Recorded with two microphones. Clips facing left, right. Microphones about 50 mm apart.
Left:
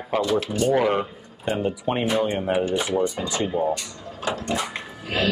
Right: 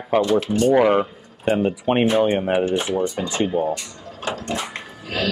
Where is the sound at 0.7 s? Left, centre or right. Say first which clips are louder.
Right 5 dB; right.